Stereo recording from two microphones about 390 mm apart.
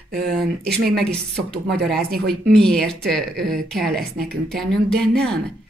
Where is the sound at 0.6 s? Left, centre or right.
Right.